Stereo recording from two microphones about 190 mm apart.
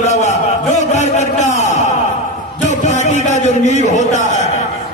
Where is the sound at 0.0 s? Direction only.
35° left (ahead or behind).